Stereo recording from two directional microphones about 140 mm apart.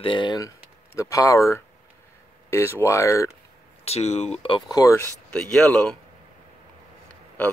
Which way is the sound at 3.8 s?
50° left (ahead or behind).